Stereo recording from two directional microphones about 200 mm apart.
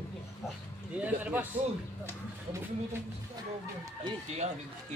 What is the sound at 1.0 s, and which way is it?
Speech, 10° right (ahead or behind).